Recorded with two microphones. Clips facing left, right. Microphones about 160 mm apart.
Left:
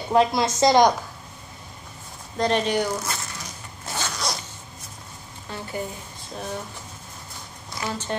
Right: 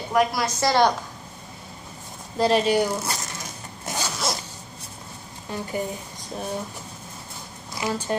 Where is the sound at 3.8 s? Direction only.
15° right (ahead or behind).